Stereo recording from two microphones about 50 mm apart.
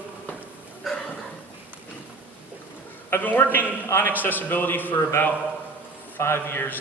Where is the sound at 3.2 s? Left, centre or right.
Left.